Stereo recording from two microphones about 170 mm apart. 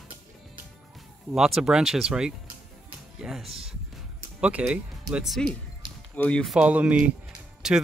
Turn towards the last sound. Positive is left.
turn(degrees=-5)  # may be behind; listen again after turning